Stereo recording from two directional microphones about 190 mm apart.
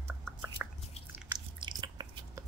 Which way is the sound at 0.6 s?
5° right (ahead or behind).